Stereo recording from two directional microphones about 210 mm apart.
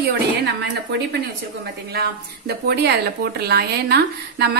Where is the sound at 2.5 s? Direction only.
50° right (ahead or behind).